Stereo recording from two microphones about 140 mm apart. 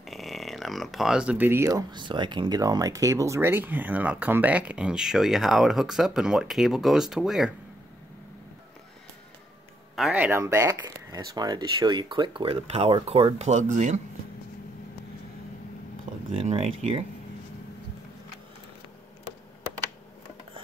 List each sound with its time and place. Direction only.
0.0 s speech: centre (ahead or behind)
10.1 s speech: 15° right (ahead or behind); by 14.0 s 60° right (ahead or behind)
16.3 s speech: 45° right (ahead or behind)